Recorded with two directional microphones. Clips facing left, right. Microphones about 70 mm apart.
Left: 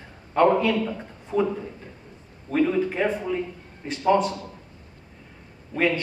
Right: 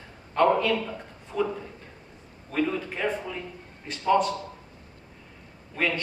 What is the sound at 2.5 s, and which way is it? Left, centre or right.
A man's voice, left.